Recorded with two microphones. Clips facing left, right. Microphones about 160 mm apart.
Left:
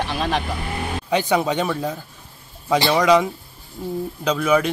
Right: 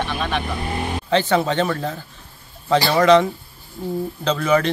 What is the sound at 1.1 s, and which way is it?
Speech, 10° left (ahead or behind).